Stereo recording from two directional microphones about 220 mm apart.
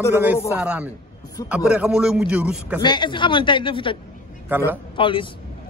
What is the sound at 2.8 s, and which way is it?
A man's voice, 20° left (ahead or behind).